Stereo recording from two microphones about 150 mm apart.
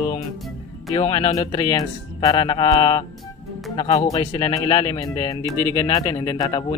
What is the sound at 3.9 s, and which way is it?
Speech, 25° left (ahead or behind).